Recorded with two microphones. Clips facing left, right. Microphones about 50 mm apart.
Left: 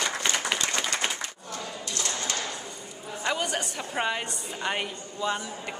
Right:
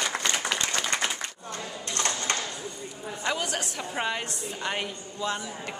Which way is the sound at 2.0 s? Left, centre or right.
Right.